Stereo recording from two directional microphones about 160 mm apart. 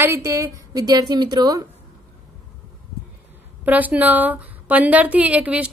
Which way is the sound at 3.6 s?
10° right (ahead or behind).